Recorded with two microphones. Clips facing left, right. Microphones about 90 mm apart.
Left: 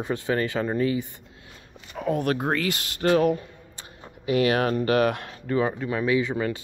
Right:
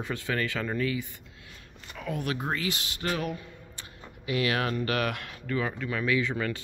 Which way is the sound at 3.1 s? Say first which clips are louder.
Left 12 dB; 40° left (ahead or behind).